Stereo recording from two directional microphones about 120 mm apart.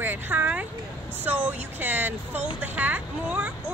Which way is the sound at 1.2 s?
15° right (ahead or behind).